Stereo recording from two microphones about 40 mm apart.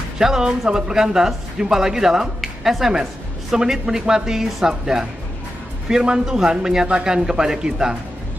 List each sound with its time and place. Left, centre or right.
0.2 s speech: centre